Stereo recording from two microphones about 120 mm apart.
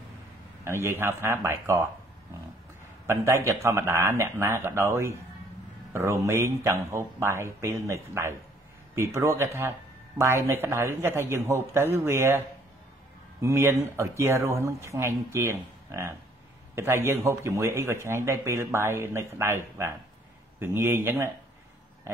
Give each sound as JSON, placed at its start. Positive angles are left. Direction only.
{"t": 0.7, "sound": "speech", "side_deg": -20}
{"t": 3.1, "sound": "speech", "side_deg": -20}